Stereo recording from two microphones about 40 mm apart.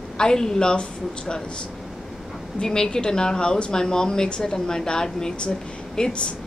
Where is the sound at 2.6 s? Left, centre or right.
Centre.